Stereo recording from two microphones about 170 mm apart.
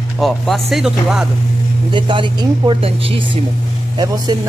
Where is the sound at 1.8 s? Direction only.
30° right (ahead or behind).